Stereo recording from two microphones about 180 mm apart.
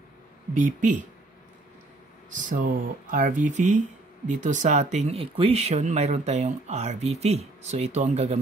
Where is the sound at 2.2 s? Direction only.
45° right (ahead or behind).